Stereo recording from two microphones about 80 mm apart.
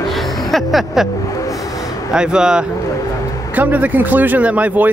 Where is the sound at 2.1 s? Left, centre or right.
Centre.